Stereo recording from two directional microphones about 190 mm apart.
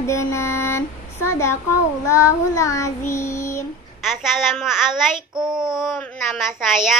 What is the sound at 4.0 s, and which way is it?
A child's voice, centre (ahead or behind).